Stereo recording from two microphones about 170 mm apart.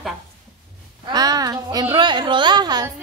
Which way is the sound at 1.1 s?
25° right (ahead or behind).